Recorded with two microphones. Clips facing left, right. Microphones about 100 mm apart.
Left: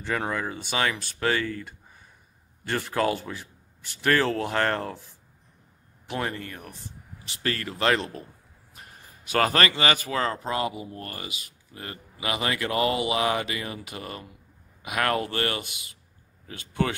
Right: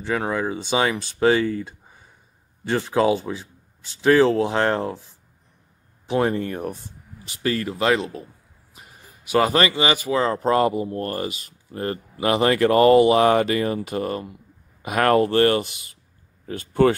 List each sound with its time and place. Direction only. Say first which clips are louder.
0.0 s speech: right 5 dB; 10° right (ahead or behind)
3.3 s a sound: right 7 dB; 15° right (ahead or behind)
4.0 s speech: right 8 dB; 15° right (ahead or behind)
6.0 s speech: right 10 dB; 25° right (ahead or behind)
6.5 s speech: right 13 dB; 45° right (ahead or behind)
7.4 s speech: right 4 dB; 15° right (ahead or behind)
10.4 s speech: right 10 dB; 50° right (ahead or behind)